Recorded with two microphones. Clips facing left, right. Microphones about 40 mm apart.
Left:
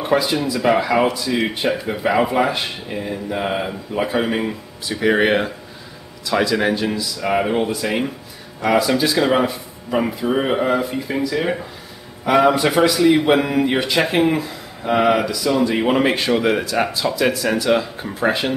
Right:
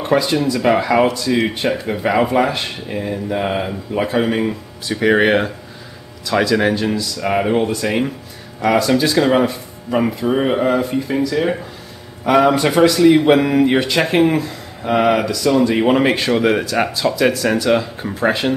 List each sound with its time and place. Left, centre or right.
0.0 s speech: centre